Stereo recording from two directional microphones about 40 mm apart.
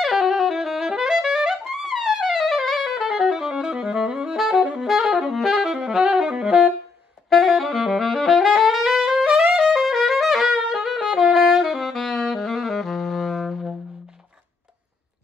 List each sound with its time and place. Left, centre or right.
0.0 s saxophone: centre
5.8 s saxophone: right
7.2 s saxophone: centre
9.8 s music: centre
11.3 s saxophone: centre